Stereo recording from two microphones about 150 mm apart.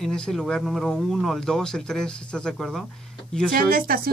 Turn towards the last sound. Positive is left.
turn(degrees=-75)  # may be behind; listen again after turning